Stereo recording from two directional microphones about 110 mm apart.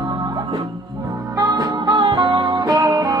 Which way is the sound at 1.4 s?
40° right (ahead or behind).